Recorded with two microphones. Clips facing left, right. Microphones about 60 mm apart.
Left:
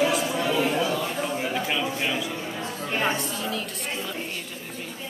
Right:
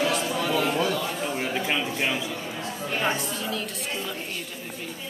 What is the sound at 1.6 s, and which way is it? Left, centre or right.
Speech, centre.